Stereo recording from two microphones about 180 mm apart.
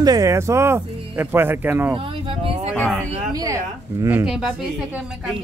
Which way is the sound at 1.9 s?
30° right (ahead or behind).